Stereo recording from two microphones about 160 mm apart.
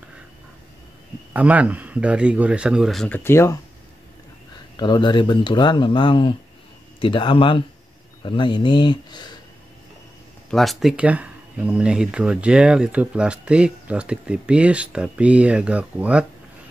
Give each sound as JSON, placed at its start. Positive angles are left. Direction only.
{"t": 1.3, "sound": "speech", "side_deg": -10}
{"t": 3.3, "sound": "speech", "side_deg": 15}
{"t": 4.7, "sound": "speech", "side_deg": 25}
{"t": 10.5, "sound": "speech", "side_deg": 0}